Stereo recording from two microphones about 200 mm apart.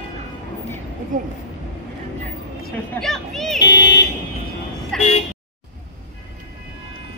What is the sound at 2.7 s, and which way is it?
Speech, 5° left (ahead or behind).